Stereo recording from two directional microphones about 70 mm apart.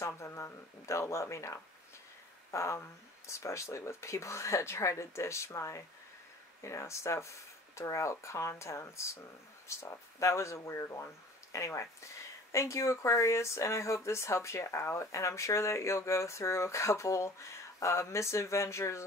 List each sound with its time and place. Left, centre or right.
0.0 s speech: left